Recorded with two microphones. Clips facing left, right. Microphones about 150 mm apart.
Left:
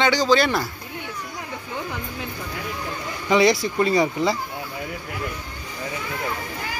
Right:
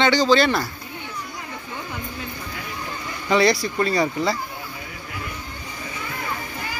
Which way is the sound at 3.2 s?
15° left (ahead or behind).